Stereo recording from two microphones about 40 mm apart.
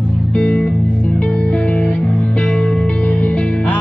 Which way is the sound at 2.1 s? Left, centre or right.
Left.